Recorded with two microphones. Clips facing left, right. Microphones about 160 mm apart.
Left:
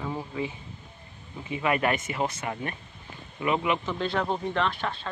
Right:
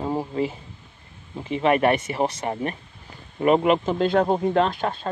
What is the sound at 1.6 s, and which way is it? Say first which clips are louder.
Speech: right 7 dB; 30° right (ahead or behind).